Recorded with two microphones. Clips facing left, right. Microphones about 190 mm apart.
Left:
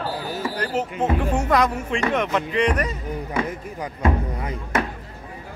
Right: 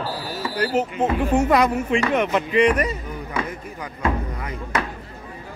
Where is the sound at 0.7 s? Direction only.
10° right (ahead or behind).